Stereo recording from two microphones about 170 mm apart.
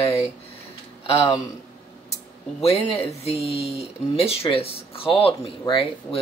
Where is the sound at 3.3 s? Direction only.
35° left (ahead or behind).